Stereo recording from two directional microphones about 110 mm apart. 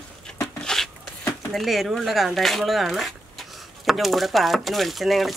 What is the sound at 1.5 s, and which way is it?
Speech, centre (ahead or behind).